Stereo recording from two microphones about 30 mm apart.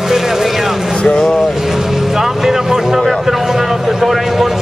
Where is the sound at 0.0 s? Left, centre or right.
Centre.